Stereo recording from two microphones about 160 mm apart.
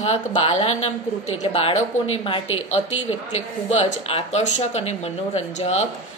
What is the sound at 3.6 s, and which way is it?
Speech, 45° left (ahead or behind).